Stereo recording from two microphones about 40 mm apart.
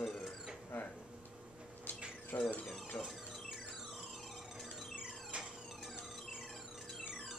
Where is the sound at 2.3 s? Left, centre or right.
Left.